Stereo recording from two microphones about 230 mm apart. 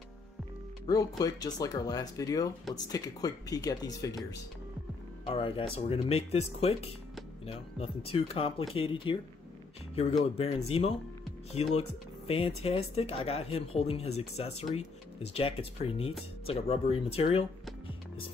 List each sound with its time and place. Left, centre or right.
0.8 s speech: centre
5.2 s speech: left
12.3 s speech: left